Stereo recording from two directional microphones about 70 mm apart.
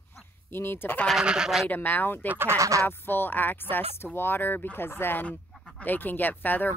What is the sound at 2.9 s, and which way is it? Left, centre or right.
Speech, left.